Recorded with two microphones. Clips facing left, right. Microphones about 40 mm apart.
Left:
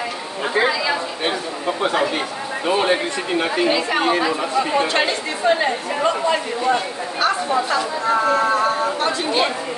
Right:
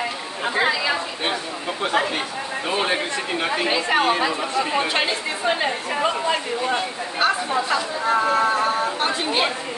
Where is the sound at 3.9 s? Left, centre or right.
Centre.